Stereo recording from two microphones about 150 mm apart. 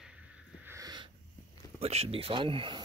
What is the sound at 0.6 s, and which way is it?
Wheeze, 25° right (ahead or behind).